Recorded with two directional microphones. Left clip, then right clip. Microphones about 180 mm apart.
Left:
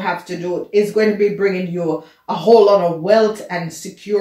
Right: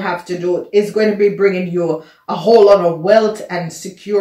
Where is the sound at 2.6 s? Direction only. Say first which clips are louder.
Right 3 dB; 35° right (ahead or behind).